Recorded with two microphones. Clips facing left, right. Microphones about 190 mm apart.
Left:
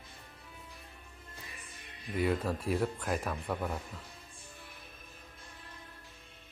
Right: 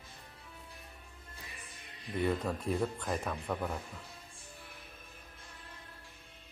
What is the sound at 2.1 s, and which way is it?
Speech, 5° left (ahead or behind).